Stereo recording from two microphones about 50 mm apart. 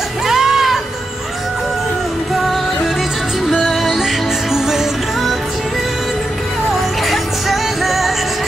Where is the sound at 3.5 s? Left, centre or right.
Centre.